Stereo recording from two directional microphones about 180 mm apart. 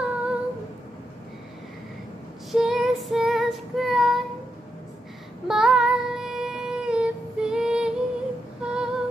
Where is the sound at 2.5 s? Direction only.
Centre (ahead or behind).